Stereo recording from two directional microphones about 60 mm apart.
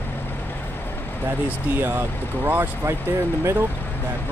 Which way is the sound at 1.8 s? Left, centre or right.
Right.